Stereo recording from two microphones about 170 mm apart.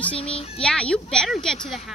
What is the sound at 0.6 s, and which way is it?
Speech, 5° left (ahead or behind).